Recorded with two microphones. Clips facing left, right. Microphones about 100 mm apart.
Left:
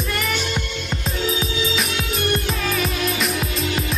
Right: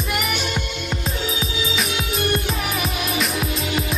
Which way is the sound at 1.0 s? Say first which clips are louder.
Left 5 dB; centre (ahead or behind).